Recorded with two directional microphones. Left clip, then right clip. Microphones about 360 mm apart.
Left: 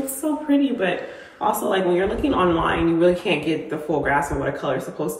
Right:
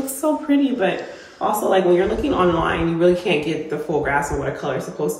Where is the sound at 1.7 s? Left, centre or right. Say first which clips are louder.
Right 4 dB; centre.